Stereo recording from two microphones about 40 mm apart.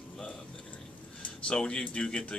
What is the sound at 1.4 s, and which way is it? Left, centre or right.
Speech, centre.